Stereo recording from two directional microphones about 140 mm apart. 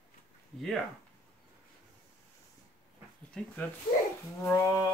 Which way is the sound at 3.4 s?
5° left (ahead or behind).